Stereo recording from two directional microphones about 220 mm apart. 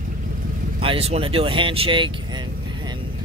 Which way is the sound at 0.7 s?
25° right (ahead or behind).